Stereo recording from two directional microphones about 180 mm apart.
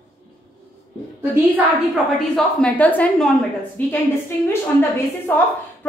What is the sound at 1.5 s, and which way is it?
A woman's voice, centre (ahead or behind).